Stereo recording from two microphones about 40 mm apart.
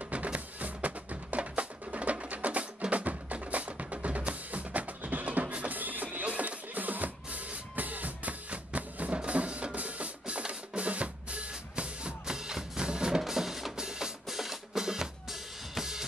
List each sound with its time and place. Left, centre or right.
0.1 s music: right
6.2 s drum: right
12.3 s music: centre
13.2 s music: centre
13.7 s drum: centre
15.7 s drum kit: centre